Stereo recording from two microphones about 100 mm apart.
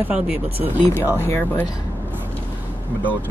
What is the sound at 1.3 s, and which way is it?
Speech, 20° left (ahead or behind).